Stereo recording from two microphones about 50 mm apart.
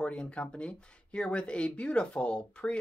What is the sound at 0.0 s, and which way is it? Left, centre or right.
Speech, left.